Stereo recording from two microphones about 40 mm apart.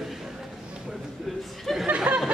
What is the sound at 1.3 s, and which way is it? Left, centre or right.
Speech, centre.